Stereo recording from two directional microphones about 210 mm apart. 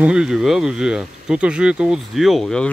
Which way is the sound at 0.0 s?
5° right (ahead or behind).